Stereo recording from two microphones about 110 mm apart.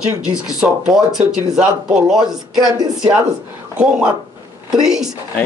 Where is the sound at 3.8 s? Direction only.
10° right (ahead or behind).